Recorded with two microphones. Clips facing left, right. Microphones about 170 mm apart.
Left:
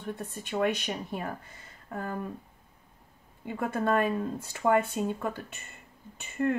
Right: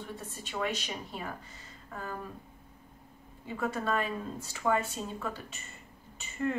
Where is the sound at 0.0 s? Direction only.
55° left (ahead or behind).